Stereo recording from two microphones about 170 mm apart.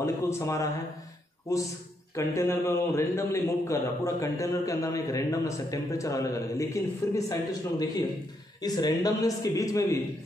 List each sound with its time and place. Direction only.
0.0 s a man's voice: 15° left (ahead or behind)
8.5 s a man's voice: 25° left (ahead or behind)